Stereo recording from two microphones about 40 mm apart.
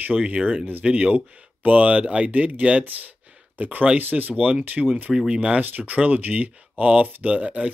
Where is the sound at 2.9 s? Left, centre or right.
Right.